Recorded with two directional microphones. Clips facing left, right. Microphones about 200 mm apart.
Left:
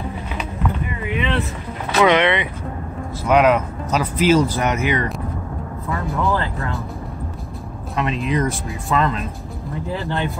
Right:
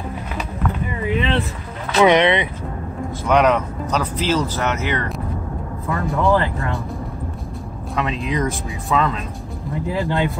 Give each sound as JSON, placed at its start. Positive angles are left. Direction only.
{"t": 2.0, "sound": "speech", "side_deg": -15}
{"t": 3.3, "sound": "speech", "side_deg": 5}
{"t": 5.9, "sound": "speech", "side_deg": 0}
{"t": 7.9, "sound": "speech", "side_deg": 0}
{"t": 9.9, "sound": "speech", "side_deg": -15}